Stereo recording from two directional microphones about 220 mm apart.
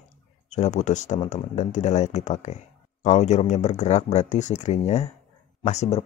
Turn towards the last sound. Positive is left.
turn(degrees=30)  # may be behind; listen again after turning